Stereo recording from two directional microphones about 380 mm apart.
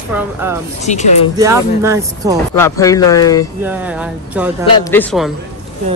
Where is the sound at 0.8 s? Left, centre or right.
Centre.